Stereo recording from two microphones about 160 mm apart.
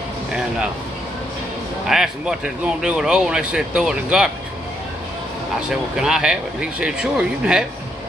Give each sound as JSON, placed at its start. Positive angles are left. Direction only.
{"t": 1.9, "sound": "speech", "side_deg": -5}
{"t": 5.7, "sound": "speech", "side_deg": -5}